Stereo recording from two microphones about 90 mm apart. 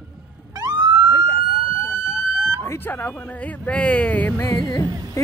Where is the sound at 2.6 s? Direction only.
20° left (ahead or behind).